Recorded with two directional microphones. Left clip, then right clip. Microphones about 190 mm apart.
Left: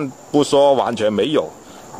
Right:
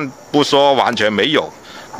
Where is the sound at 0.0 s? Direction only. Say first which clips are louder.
Right 2 dB; 5° right (ahead or behind).